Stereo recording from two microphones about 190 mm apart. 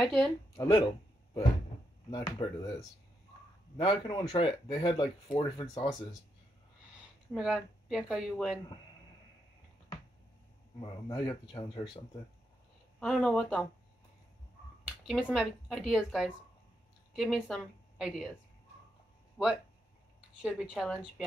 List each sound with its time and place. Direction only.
0.0 s speech: centre (ahead or behind)
0.6 s speech: 25° left (ahead or behind)
2.0 s speech: 20° left (ahead or behind)
3.7 s speech: 25° left (ahead or behind)
7.3 s speech: centre (ahead or behind)
10.8 s speech: 25° left (ahead or behind)
13.0 s speech: centre (ahead or behind)
15.0 s a woman's voice: centre (ahead or behind)
19.3 s speech: centre (ahead or behind)